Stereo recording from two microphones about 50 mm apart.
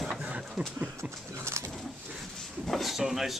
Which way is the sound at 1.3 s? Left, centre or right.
Right.